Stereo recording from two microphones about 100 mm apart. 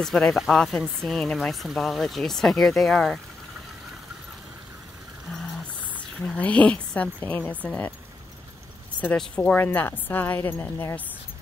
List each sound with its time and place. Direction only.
0.0 s speech: 5° left (ahead or behind)
6.3 s a woman's voice: 15° left (ahead or behind)
9.0 s a woman's voice: 10° left (ahead or behind)